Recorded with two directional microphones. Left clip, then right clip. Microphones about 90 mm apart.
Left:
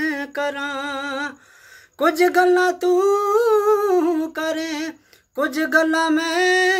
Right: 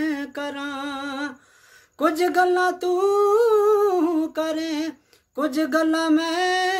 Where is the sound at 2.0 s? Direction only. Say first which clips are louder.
Left 3 dB; 35° right (ahead or behind).